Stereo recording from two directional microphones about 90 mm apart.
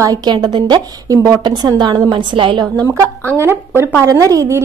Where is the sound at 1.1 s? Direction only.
40° right (ahead or behind).